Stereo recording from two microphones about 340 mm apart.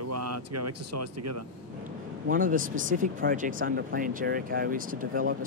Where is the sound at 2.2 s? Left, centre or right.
Right.